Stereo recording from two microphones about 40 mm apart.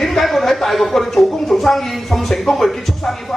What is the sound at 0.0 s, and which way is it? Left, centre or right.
A man's voice, centre.